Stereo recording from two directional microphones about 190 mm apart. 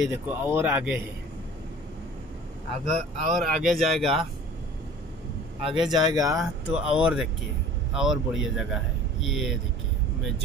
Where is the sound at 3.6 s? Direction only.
Centre (ahead or behind).